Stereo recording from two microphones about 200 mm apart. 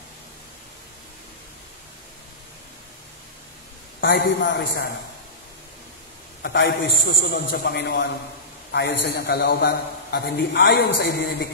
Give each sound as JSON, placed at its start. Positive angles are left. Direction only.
{"t": 4.0, "sound": "a man's voice", "side_deg": 65}
{"t": 6.4, "sound": "a man's voice", "side_deg": 65}